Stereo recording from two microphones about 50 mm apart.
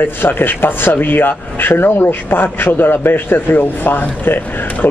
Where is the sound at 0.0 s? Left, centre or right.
Left.